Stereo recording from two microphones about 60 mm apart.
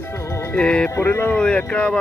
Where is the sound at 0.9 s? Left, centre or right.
Left.